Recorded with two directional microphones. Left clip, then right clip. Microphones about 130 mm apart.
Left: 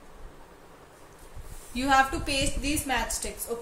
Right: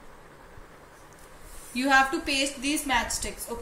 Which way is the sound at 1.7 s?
35° left (ahead or behind).